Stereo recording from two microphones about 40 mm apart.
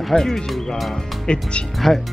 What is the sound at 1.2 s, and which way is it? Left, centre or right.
Speech, left.